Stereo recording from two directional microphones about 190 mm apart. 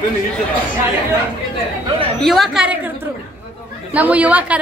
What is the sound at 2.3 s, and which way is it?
Speech, centre (ahead or behind).